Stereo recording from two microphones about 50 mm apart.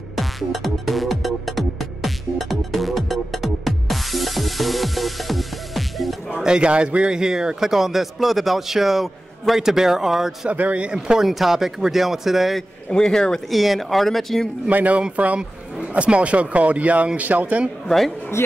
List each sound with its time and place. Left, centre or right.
0.1 s music: centre
6.4 s speech: centre
10.5 s speech: right
10.9 s speech: centre
11.2 s speech: centre
12.9 s speech: centre
13.5 s speech: centre
14.7 s a man's voice: right
17.8 s speech: centre